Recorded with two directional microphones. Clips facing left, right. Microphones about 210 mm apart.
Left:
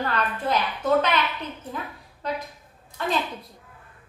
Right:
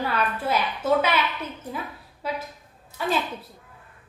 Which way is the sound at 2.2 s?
5° right (ahead or behind).